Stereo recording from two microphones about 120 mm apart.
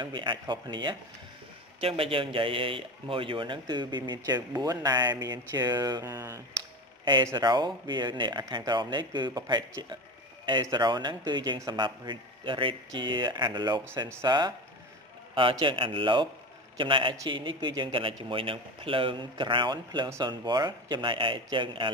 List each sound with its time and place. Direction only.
0.0 s a man's voice: 40° right (ahead or behind)
1.8 s a man's voice: 50° right (ahead or behind); by 6.4 s 30° right (ahead or behind)
7.3 s a man's voice: 40° right (ahead or behind)
15.6 s a man's voice: 45° right (ahead or behind)